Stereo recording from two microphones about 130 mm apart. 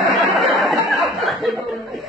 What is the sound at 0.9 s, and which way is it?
Chuckle, centre (ahead or behind).